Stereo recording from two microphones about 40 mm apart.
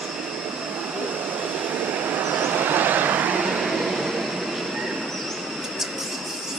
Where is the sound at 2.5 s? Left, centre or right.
Right.